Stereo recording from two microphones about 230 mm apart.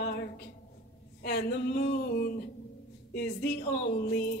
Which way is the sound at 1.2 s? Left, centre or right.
Left.